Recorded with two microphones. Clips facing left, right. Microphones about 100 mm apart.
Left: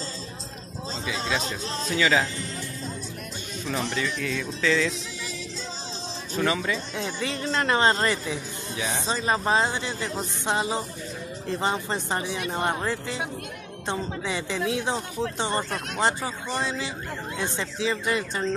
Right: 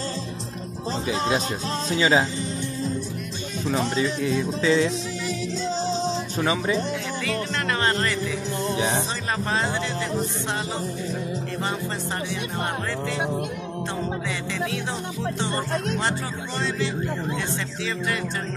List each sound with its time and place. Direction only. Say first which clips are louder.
1.0 s speech: right 4 dB; 35° right (ahead or behind)
3.7 s speech: right 4 dB; 30° right (ahead or behind)
6.3 s speech: left 1 dB; 20° right (ahead or behind)
7.2 s speech: left 1 dB; 25° left (ahead or behind)
8.6 s speech: right 6 dB; 25° right (ahead or behind)
9.3 s speech: left 3 dB; 20° left (ahead or behind)
16.0 s speech: left 1 dB; 15° left (ahead or behind)